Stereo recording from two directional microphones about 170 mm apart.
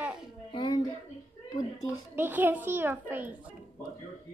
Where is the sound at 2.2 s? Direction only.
10° right (ahead or behind).